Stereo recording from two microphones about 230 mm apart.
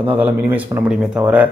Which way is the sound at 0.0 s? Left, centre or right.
Centre.